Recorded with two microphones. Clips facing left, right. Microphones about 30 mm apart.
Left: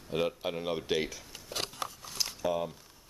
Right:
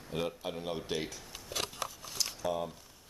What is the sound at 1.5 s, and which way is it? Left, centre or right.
Scissors, left.